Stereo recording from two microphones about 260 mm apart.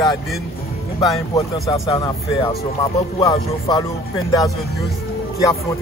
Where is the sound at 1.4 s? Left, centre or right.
Centre.